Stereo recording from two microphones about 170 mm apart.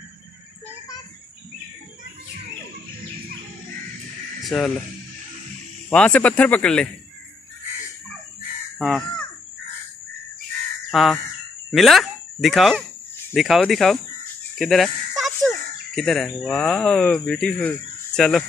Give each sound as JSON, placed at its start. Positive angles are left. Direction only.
{"t": 0.7, "sound": "a sound", "side_deg": 20}
{"t": 4.4, "sound": "speech", "side_deg": 0}
{"t": 5.9, "sound": "speech", "side_deg": 10}
{"t": 8.7, "sound": "caw", "side_deg": 0}
{"t": 10.9, "sound": "speech", "side_deg": 0}